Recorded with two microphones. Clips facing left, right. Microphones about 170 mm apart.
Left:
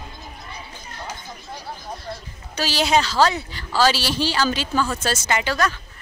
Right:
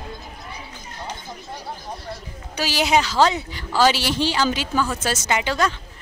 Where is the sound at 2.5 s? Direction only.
15° right (ahead or behind).